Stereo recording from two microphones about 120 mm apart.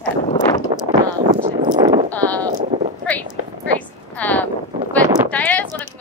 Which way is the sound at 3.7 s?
15° left (ahead or behind).